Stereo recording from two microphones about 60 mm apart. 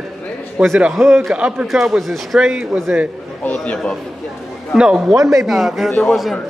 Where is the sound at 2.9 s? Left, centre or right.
Right.